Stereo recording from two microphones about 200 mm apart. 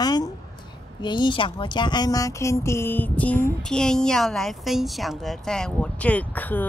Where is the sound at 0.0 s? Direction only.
20° left (ahead or behind).